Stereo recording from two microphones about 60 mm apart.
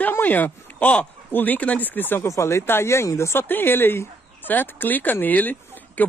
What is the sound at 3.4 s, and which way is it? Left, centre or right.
Speech, left.